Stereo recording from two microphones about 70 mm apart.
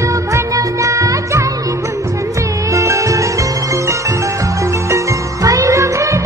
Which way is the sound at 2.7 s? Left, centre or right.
Right.